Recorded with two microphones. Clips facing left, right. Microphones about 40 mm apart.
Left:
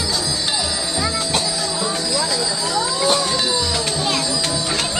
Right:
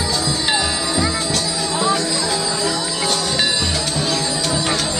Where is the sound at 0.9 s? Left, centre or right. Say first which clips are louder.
Right 1 dB; centre.